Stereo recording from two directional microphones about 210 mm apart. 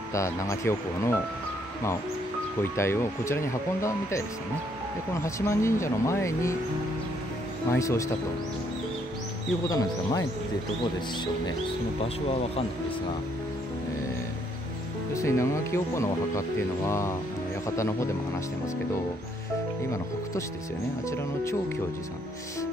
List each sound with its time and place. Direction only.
0.1 s speech: 15° left (ahead or behind)
2.6 s speech: 10° left (ahead or behind)
7.7 s speech: 15° left (ahead or behind)
9.7 s speech: 15° left (ahead or behind)
15.1 s speech: 15° left (ahead or behind)